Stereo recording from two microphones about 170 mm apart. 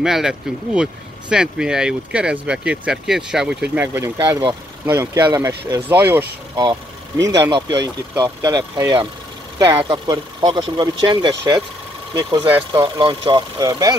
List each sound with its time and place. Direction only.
0.0 s speech: 5° right (ahead or behind); by 11.6 s 25° right (ahead or behind)
12.4 s speech: 10° right (ahead or behind)
12.8 s speech: 30° right (ahead or behind)